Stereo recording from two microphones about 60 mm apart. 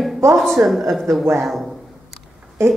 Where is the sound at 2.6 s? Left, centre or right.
Right.